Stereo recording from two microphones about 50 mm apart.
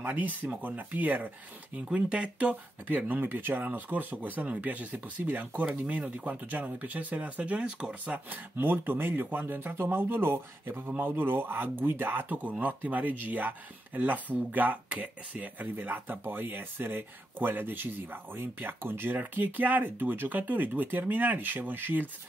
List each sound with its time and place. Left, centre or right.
0.0 s speech: right
2.0 s speech: right
3.1 s speech: right
8.1 s speech: right
15.7 s speech: right